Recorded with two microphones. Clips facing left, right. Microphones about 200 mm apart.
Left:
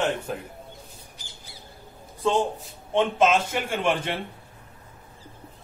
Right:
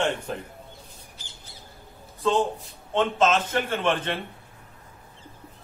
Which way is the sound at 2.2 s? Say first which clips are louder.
Even; 10° left (ahead or behind).